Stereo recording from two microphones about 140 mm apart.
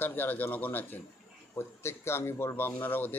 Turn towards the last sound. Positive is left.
turn(degrees=15)  # may be behind; listen again after turning